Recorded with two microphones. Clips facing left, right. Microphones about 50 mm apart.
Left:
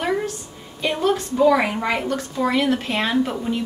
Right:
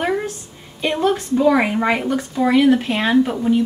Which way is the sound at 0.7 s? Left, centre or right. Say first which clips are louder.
Right 2 dB; centre.